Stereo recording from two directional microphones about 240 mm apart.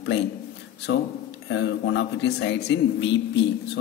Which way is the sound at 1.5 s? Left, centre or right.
Left.